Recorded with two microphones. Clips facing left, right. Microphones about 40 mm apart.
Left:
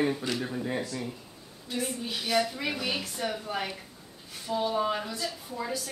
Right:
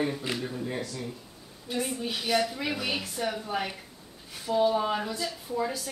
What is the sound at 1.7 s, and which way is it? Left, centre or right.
A woman's voice, centre.